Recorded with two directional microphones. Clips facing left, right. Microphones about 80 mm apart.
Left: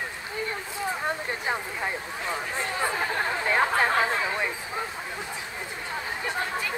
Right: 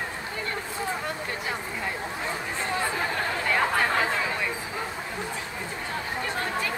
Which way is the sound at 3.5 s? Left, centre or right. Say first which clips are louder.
Left 1 dB; left.